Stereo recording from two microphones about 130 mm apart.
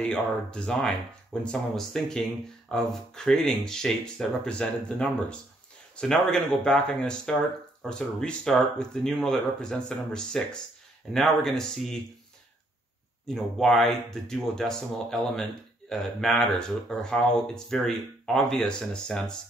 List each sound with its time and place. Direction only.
0.0 s speech: 10° left (ahead or behind)
13.3 s speech: 5° left (ahead or behind)